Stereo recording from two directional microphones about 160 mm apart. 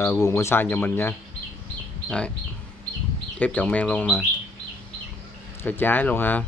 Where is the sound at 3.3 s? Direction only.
10° left (ahead or behind).